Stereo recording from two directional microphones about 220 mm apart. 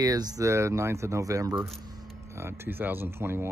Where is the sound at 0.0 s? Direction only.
15° right (ahead or behind).